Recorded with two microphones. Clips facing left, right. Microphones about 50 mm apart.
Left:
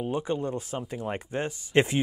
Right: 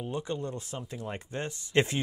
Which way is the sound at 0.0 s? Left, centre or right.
Left.